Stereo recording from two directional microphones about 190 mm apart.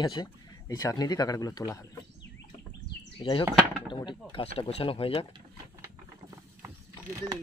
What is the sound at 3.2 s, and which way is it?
Speech, 25° left (ahead or behind).